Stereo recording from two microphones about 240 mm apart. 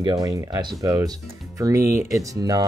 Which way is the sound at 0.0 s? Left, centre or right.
Centre.